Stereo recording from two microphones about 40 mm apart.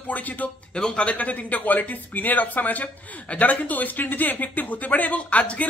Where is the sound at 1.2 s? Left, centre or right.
Left.